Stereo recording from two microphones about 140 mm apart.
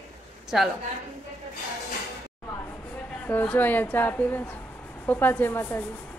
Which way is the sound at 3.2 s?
15° left (ahead or behind).